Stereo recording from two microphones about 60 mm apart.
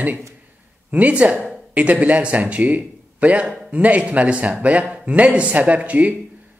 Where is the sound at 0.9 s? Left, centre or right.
Right.